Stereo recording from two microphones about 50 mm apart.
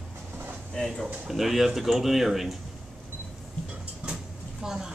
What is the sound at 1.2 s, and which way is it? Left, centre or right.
Speech, centre.